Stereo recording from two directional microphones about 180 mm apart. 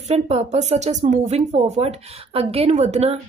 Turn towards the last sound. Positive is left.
turn(degrees=-35)  # may be behind; listen again after turning